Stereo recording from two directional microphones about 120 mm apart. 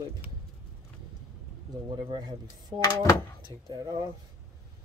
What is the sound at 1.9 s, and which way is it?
Speech, 45° right (ahead or behind).